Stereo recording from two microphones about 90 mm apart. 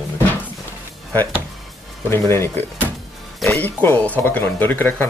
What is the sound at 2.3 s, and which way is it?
Speech, 25° left (ahead or behind).